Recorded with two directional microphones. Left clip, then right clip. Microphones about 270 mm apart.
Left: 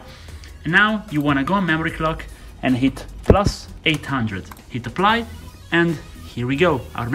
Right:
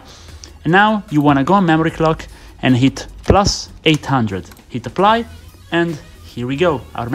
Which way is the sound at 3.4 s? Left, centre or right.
Right.